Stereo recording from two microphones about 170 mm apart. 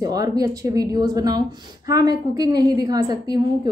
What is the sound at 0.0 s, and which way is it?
A woman's voice, 20° right (ahead or behind).